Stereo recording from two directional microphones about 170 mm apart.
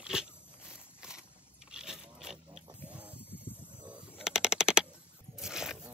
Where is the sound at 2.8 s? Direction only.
5° right (ahead or behind).